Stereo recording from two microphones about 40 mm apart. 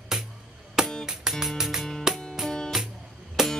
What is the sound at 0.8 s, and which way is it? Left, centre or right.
Music, centre.